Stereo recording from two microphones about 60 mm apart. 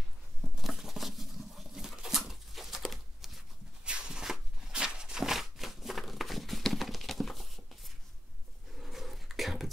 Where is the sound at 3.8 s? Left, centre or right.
Centre.